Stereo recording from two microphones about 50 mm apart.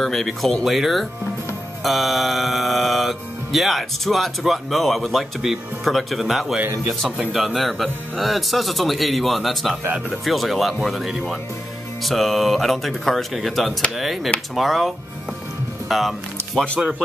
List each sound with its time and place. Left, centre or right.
0.0 s music: centre
15.9 s speech: centre